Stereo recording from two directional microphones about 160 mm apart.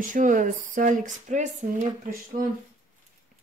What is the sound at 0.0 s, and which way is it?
Speech, 55° right (ahead or behind).